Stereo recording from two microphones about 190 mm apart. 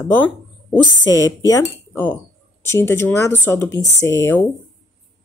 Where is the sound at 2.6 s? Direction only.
15° left (ahead or behind).